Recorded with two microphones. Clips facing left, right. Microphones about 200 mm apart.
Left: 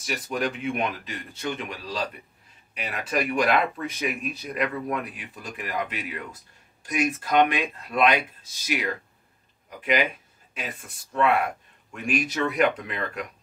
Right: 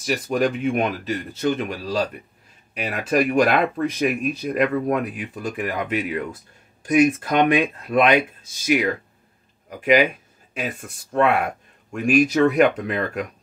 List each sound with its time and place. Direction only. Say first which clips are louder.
0.0 s speech: right 7 dB; 45° right (ahead or behind)
11.1 s speech: right 3 dB; 55° right (ahead or behind)